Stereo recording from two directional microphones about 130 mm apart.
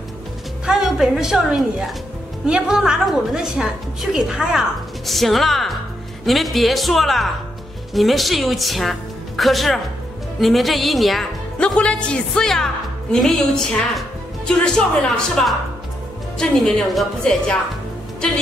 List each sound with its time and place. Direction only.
0.7 s a woman's voice: 5° right (ahead or behind)